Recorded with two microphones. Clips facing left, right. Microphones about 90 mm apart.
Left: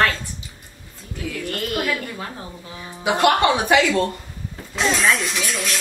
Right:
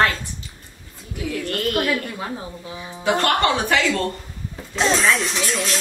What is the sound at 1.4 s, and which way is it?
Speech, centre (ahead or behind).